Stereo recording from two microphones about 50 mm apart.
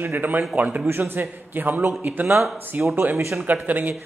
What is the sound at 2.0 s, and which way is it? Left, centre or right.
Speech, right.